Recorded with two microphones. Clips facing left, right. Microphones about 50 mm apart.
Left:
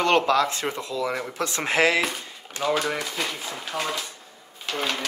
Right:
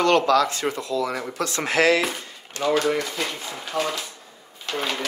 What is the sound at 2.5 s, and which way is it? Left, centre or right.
Speech, centre.